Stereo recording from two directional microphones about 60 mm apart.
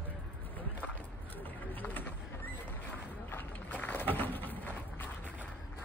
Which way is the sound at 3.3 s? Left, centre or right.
Left.